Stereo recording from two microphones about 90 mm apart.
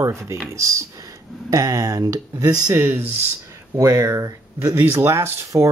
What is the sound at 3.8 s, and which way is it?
Speech, 45° right (ahead or behind).